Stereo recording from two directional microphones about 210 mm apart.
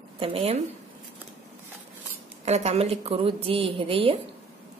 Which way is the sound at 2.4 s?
30° right (ahead or behind).